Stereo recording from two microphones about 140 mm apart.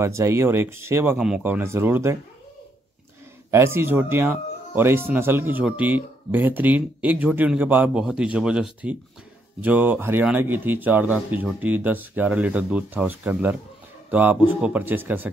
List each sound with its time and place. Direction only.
0.0 s speech: 20° right (ahead or behind)
1.1 s speech: 5° right (ahead or behind)
3.5 s speech: 20° right (ahead or behind)